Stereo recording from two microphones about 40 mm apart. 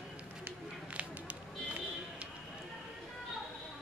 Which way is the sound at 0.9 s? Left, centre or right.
Right.